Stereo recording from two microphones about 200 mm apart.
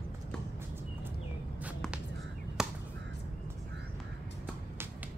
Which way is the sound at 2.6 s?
Centre (ahead or behind).